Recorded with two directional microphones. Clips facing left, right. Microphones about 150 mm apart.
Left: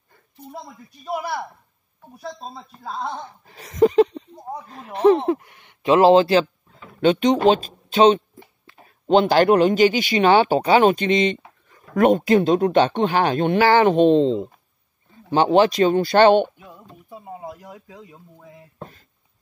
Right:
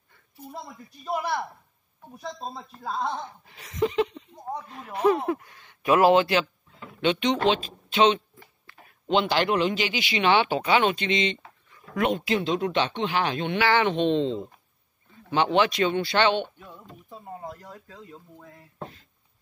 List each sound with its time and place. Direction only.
1.0 s speech: 5° left (ahead or behind)
3.4 s speech: 40° left (ahead or behind)
4.3 s speech: 5° left (ahead or behind)
4.6 s speech: 35° left (ahead or behind)
8.4 s a sound: 20° left (ahead or behind)
9.0 s speech: 40° left (ahead or behind)
16.4 s speech: 5° left (ahead or behind)
18.8 s a sound: 45° left (ahead or behind)